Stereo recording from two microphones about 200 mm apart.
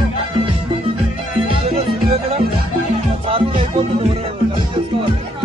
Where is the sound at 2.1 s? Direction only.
30° right (ahead or behind).